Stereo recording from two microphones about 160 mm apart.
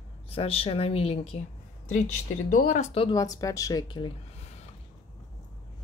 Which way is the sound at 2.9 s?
35° left (ahead or behind).